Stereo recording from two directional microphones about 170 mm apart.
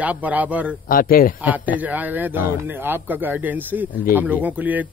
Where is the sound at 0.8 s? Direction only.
55° left (ahead or behind).